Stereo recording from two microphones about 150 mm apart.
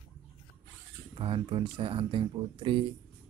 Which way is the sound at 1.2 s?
35° right (ahead or behind).